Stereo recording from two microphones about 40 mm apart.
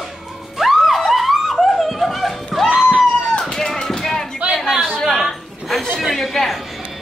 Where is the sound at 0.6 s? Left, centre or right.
Centre.